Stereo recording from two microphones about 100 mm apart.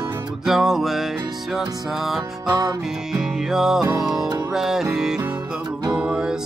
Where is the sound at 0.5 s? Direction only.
Centre (ahead or behind).